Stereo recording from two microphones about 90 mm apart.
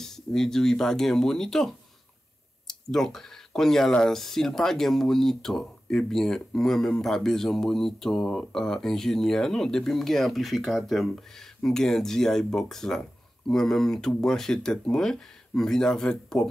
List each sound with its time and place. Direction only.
0.0 s speech: 5° left (ahead or behind)